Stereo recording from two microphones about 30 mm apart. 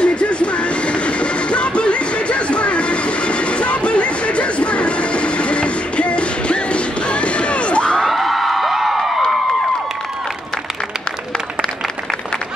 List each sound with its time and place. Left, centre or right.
0.0 s train: left
8.1 s music: centre